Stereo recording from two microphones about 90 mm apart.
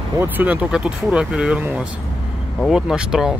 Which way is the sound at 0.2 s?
20° right (ahead or behind).